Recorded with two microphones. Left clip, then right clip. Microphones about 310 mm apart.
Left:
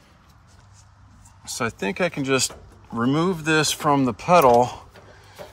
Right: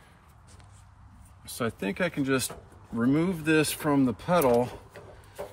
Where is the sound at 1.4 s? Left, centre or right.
Centre.